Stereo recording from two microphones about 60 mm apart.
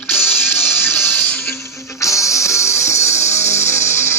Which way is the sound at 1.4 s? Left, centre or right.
Left.